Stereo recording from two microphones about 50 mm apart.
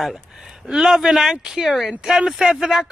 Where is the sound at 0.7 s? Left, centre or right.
Centre.